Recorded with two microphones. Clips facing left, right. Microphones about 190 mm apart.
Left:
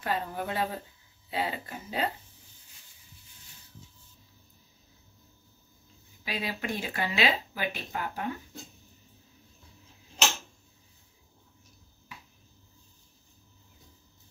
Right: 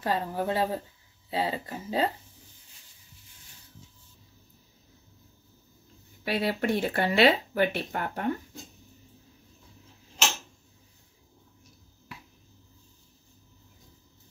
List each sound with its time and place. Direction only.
0.0 s speech: 35° right (ahead or behind)
6.2 s speech: 65° right (ahead or behind)